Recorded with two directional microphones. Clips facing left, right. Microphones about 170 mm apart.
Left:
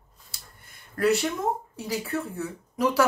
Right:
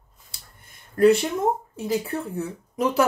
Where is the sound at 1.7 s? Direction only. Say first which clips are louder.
Right 4 dB; 25° right (ahead or behind).